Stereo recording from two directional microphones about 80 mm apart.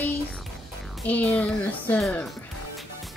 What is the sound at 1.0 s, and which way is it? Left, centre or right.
A woman's voice, centre.